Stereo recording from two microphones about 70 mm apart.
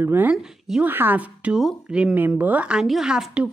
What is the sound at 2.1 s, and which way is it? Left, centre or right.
Speech, right.